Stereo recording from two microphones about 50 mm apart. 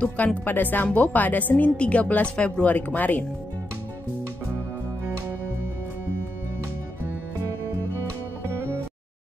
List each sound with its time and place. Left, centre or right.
0.0 s speech: left
0.5 s speech: left